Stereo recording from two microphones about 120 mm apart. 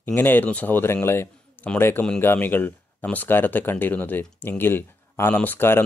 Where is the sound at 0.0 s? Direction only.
15° left (ahead or behind).